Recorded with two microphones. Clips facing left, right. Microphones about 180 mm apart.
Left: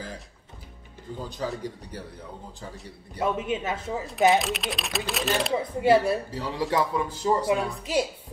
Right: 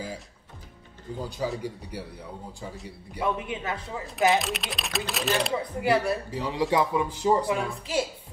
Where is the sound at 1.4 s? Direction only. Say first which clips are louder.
Right 1 dB; 10° right (ahead or behind).